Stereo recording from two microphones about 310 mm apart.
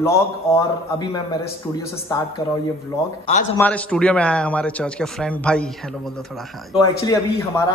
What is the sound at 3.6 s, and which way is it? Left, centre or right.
A man's voice, centre.